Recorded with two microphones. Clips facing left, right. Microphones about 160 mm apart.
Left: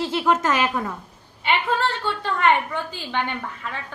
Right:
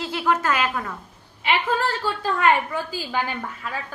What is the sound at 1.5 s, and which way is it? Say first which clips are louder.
A woman's voice: even; 5° right (ahead or behind).